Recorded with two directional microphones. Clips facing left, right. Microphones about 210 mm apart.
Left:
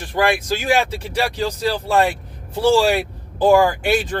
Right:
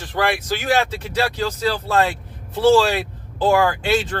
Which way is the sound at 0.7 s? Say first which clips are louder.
Even; 15° left (ahead or behind).